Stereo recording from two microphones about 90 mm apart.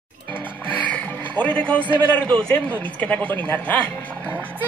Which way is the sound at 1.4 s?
15° left (ahead or behind).